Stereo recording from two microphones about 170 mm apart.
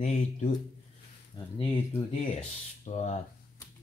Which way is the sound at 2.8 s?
45° left (ahead or behind).